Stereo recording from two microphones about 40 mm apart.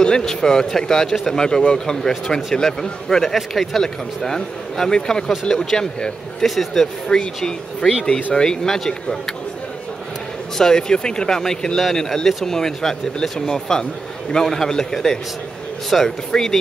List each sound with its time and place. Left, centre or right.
0.0 s speech: centre
6.4 s speech: centre
8.4 s speech: centre
10.6 s speech: centre